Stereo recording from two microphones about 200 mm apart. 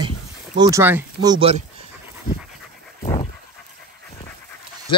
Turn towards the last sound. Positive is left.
turn(degrees=30)  # may be behind; listen again after turning